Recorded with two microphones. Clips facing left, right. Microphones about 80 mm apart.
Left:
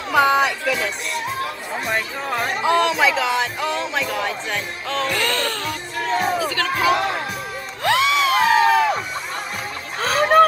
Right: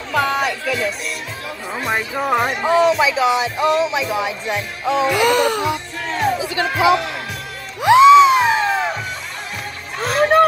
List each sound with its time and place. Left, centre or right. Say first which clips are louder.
0.1 s speech: left 2 dB; centre
2.0 s music: right 5 dB; centre
2.6 s music: right 1 dB; centre
7.8 s a sound: right 11 dB; right
9.9 s vehicle: right 1 dB; centre